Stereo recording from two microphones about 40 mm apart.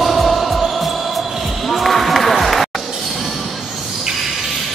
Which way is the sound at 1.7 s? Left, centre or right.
Centre.